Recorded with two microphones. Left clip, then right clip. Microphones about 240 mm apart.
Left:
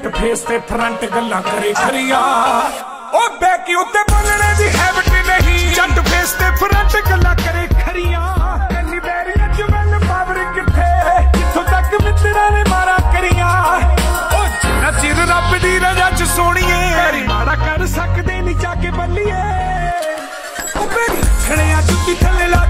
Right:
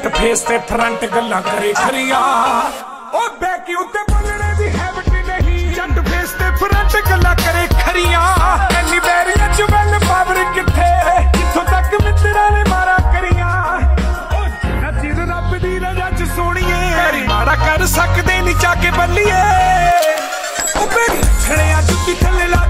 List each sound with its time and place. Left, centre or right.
0.2 s music: centre
3.2 s music: left
4.3 s music: left
6.0 s music: centre
6.6 s music: centre
8.1 s music: right
10.0 s music: right
10.8 s music: centre
13.5 s music: left
15.1 s music: left
16.3 s music: centre
18.6 s music: right
20.9 s music: centre